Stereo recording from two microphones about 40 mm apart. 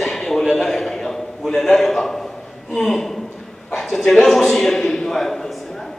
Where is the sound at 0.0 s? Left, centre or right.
Centre.